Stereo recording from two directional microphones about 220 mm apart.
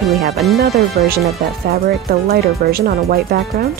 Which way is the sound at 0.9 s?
45° right (ahead or behind).